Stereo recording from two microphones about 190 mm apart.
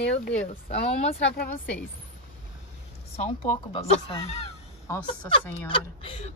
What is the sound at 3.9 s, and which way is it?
Speech, 30° left (ahead or behind).